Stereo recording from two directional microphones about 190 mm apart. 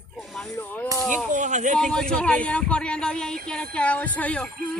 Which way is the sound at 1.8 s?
5° left (ahead or behind).